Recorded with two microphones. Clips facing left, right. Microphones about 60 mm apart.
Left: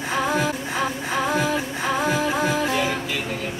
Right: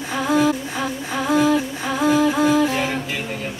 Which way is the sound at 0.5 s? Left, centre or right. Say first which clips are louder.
Right 2 dB; left.